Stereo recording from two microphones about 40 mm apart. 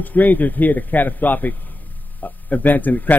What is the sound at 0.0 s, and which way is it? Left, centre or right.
A man's voice, left.